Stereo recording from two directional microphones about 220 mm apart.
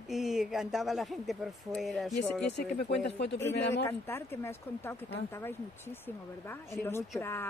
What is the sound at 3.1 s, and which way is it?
Speech, 50° left (ahead or behind).